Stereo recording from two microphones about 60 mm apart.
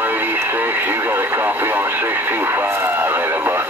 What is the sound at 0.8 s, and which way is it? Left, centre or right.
Radio, right.